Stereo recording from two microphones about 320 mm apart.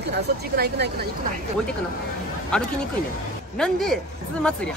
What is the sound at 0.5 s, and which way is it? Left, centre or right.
Speech, right.